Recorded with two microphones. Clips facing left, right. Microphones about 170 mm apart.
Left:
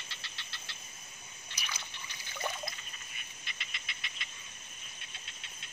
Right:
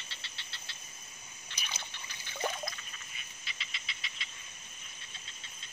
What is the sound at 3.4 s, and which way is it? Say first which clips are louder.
Cricket: right 1 dB; 50° left (ahead or behind).